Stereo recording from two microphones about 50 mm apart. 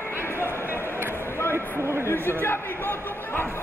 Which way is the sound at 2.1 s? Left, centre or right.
Left.